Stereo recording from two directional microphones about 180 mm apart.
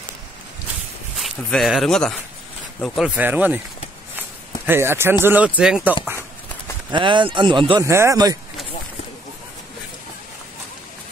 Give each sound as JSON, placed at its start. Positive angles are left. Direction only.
{"t": 1.1, "sound": "speech", "side_deg": 0}
{"t": 4.6, "sound": "speech", "side_deg": -15}
{"t": 6.9, "sound": "speech", "side_deg": -25}